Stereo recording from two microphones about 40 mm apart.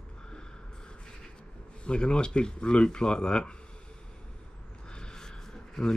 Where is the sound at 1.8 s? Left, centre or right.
Left.